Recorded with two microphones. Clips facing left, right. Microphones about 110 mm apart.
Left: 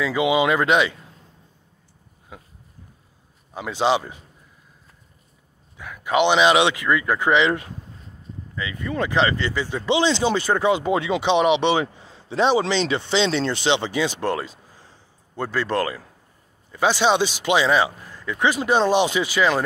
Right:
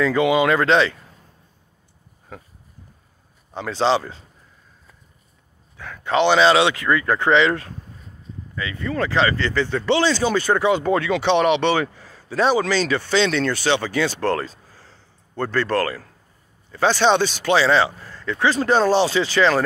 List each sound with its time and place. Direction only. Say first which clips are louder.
0.0 s speech: right 2 dB; 10° left (ahead or behind)
3.5 s speech: right 1 dB; 15° left (ahead or behind)
5.8 s speech: even; 15° left (ahead or behind)